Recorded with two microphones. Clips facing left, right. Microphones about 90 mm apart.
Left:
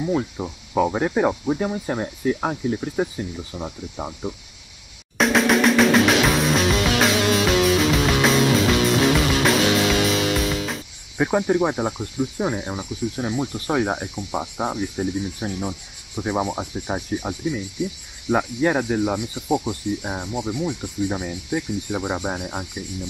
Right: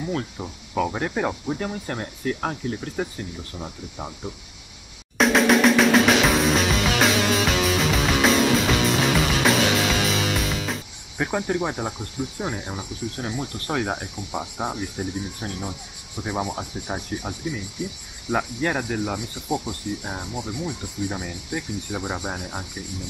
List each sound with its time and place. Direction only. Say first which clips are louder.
0.0 s speech: left 5 dB; 10° left (ahead or behind)
5.1 s music: even; centre (ahead or behind)
11.1 s speech: left 5 dB; 10° left (ahead or behind)